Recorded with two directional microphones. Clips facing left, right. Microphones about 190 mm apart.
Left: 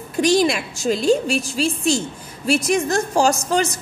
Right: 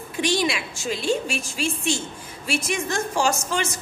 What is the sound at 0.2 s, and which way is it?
A woman's voice, 40° left (ahead or behind).